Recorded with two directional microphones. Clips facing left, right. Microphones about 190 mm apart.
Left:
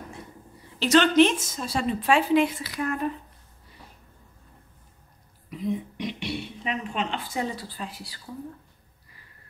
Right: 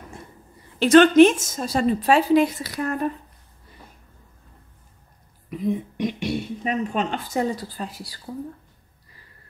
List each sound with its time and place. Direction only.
0.7 s a woman's voice: 50° right (ahead or behind)
5.5 s speech: 50° right (ahead or behind)